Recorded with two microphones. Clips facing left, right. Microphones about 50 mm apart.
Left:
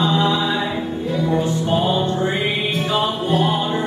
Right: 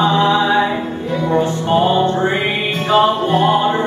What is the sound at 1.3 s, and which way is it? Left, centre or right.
Music, right.